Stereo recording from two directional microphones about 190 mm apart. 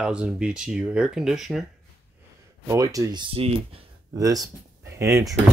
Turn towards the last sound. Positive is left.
turn(degrees=-15)  # may be behind; listen again after turning